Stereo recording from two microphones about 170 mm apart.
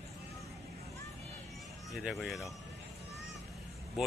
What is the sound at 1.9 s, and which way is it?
Speech, centre (ahead or behind).